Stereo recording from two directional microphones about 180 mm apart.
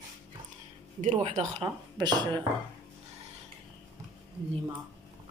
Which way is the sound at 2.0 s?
25° right (ahead or behind).